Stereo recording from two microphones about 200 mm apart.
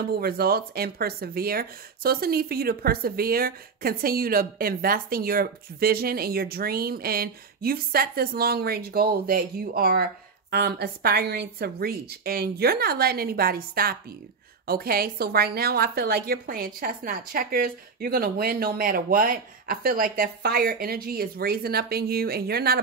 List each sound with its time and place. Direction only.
0.2 s speech: 50° right (ahead or behind)